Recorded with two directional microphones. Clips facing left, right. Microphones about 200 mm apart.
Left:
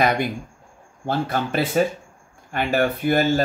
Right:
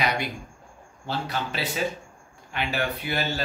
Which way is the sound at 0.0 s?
50° left (ahead or behind).